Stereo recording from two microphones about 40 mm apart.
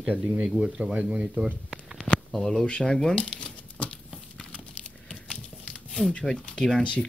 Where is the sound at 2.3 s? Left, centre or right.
Centre.